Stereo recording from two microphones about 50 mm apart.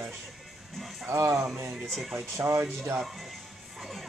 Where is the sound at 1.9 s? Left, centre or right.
Centre.